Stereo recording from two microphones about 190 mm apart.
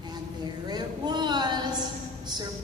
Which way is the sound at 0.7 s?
20° right (ahead or behind).